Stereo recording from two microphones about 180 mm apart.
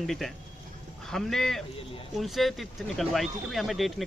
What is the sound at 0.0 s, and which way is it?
Speech, centre (ahead or behind).